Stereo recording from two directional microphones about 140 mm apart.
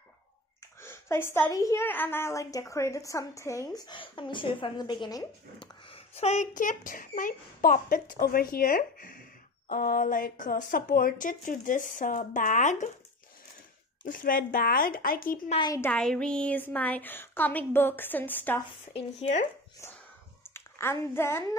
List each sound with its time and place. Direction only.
0.8 s a woman's voice: 15° left (ahead or behind); by 5.9 s 35° left (ahead or behind)
6.1 s speech: 55° left (ahead or behind); by 9.2 s 80° left
9.7 s speech: 90° left; by 12.9 s 60° left (ahead or behind)
14.0 s speech: 80° left
15.9 s a woman's voice: 5° left (ahead or behind)
20.5 s a woman's voice: 20° left (ahead or behind)